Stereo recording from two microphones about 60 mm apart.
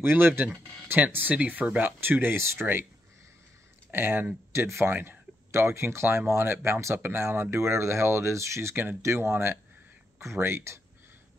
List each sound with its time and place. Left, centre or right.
0.0 s speech: right
2.6 s speech: right
3.9 s speech: right
4.5 s speech: right
9.3 s speech: right